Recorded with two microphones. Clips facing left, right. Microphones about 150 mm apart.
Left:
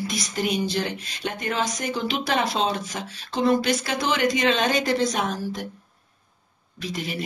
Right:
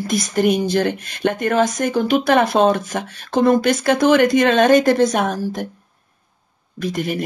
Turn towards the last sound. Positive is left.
turn(degrees=-50)  # may be behind; listen again after turning